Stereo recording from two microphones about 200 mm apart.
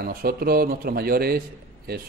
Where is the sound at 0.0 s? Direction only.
50° right (ahead or behind).